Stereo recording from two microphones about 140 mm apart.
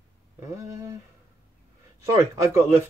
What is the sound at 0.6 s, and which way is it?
Speech, 20° right (ahead or behind).